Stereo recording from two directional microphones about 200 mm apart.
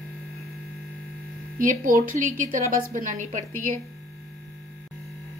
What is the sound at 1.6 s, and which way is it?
A woman's voice, 45° right (ahead or behind).